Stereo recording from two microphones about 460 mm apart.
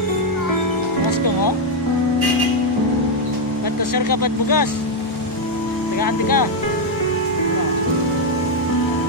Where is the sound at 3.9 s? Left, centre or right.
Left.